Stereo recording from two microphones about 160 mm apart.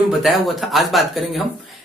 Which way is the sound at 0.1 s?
Centre (ahead or behind).